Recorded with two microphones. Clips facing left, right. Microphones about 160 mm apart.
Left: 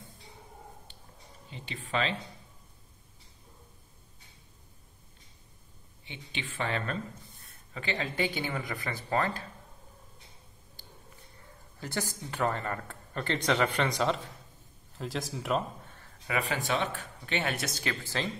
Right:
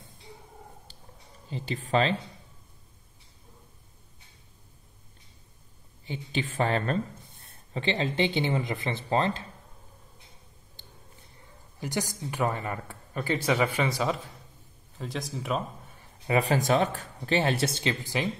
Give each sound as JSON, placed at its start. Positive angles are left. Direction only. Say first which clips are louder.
{"t": 0.9, "sound": "a sound", "louder": "right 2 dB", "side_deg": -40}
{"t": 1.5, "sound": "speech", "louder": "right 7 dB", "side_deg": -40}
{"t": 6.0, "sound": "speech", "louder": "right 9 dB", "side_deg": -40}
{"t": 11.8, "sound": "a woman's voice", "louder": "right 4 dB", "side_deg": -15}
{"t": 16.3, "sound": "speech", "louder": "right 7 dB", "side_deg": -35}
{"t": 18.0, "sound": "a woman's voice", "louder": "right 4 dB", "side_deg": -15}